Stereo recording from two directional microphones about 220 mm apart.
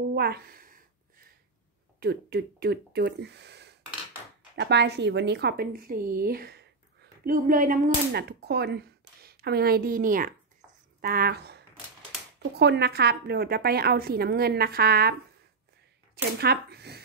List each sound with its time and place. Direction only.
0.1 s a sound: 45° right (ahead or behind)
2.0 s a woman's voice: 45° right (ahead or behind)
16.3 s speech: 50° right (ahead or behind)